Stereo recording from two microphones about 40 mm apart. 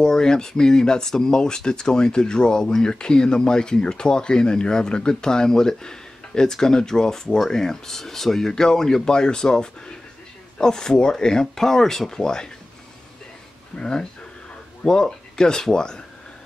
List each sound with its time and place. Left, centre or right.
0.0 s speech: centre
13.7 s speech: left